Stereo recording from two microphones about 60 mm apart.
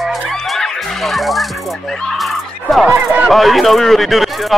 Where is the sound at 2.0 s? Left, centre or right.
Centre.